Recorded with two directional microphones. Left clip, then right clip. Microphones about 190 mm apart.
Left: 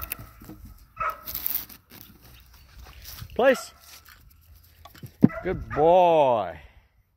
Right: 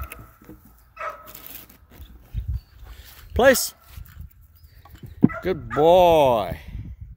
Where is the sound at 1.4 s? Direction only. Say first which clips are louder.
Left 5 dB; 70° left (ahead or behind).